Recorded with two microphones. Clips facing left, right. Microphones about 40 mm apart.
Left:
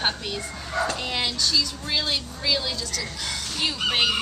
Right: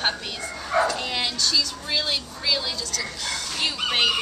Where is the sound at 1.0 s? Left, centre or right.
Centre.